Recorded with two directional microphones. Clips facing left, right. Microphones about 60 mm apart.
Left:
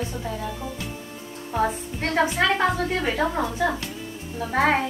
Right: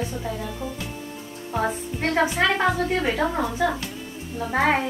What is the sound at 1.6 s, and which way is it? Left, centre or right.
A woman's voice, centre.